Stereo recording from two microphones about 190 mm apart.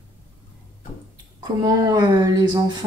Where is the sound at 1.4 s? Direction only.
20° right (ahead or behind).